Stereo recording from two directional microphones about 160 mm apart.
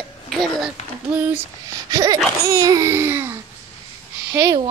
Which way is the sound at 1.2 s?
10° right (ahead or behind).